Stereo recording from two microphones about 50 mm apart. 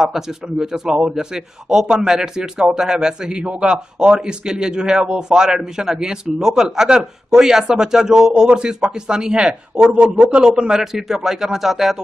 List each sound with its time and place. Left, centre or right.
0.0 s a man's voice: centre